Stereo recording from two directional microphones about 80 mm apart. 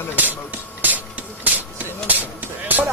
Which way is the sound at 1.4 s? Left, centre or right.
Right.